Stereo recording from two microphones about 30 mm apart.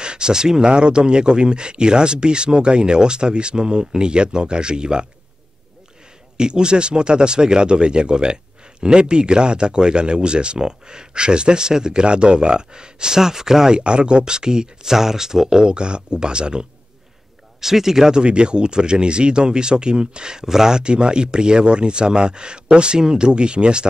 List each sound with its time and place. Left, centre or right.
0.0 s speech: right
6.3 s speech: right
13.7 s speech: right
15.6 s speech: right
17.6 s speech: centre
18.1 s speech: right
20.4 s speech: centre
20.7 s speech: right